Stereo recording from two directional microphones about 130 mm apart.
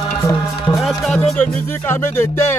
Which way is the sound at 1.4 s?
20° left (ahead or behind).